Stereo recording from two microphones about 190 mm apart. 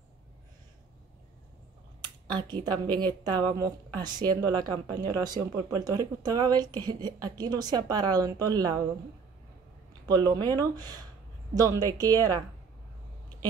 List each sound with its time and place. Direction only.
2.3 s speech: 25° right (ahead or behind)
10.0 s a woman's voice: 20° right (ahead or behind)